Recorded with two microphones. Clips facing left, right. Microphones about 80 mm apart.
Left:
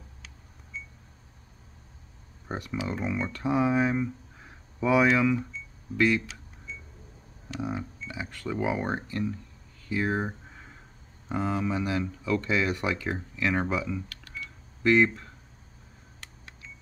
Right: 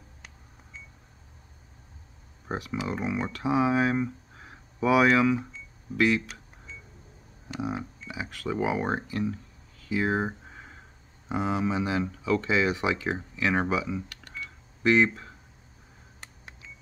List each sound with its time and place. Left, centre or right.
2.4 s speech: centre
7.4 s speech: centre
9.8 s a sound: centre
11.2 s speech: centre